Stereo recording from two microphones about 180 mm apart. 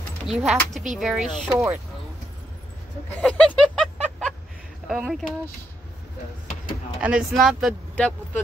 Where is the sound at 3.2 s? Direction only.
5° left (ahead or behind).